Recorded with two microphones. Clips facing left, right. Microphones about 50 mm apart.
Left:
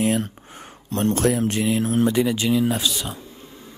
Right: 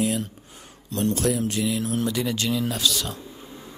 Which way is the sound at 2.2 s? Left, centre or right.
Centre.